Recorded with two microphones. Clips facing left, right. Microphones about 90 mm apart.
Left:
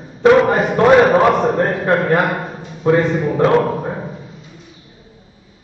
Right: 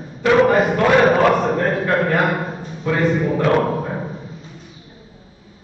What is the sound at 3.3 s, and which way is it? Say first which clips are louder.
Speech: left 3 dB; 25° left (ahead or behind).